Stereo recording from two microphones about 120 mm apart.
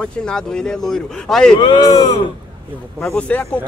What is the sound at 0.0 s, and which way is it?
Speech, 5° left (ahead or behind).